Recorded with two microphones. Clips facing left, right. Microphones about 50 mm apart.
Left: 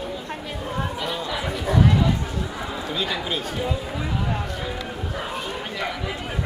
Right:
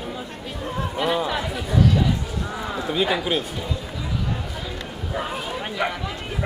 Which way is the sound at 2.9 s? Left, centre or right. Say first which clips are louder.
Right 6 dB; right.